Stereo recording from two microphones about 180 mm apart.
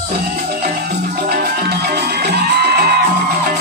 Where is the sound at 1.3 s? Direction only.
60° right (ahead or behind).